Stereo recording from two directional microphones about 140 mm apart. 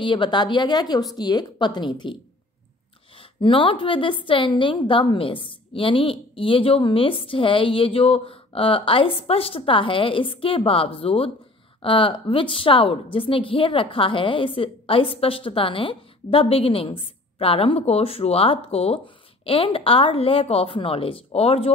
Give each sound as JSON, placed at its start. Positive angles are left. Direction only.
{"t": 0.0, "sound": "a woman's voice", "side_deg": 35}
{"t": 3.3, "sound": "a woman's voice", "side_deg": 40}